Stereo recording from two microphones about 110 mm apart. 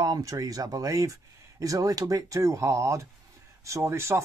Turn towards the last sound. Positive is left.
turn(degrees=-25)  # may be behind; listen again after turning